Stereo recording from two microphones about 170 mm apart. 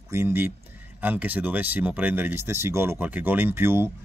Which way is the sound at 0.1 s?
15° right (ahead or behind).